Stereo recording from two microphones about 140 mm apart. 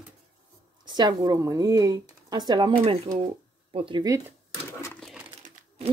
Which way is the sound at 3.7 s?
40° right (ahead or behind).